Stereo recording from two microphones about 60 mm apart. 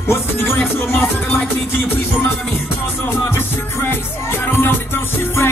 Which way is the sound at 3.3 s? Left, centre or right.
Left.